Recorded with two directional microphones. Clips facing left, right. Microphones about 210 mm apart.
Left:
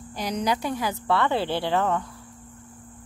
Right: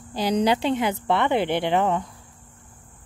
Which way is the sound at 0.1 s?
30° right (ahead or behind).